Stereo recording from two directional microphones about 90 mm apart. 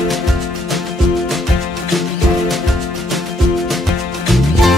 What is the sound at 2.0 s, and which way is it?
Music, centre (ahead or behind).